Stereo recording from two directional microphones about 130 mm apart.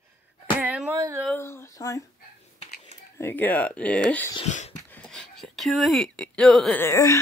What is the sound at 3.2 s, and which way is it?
Speech, 15° left (ahead or behind).